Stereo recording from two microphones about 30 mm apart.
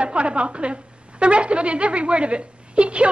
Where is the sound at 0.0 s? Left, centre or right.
Right.